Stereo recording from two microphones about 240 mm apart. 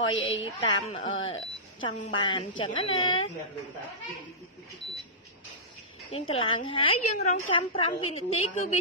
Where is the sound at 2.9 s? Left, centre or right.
Left.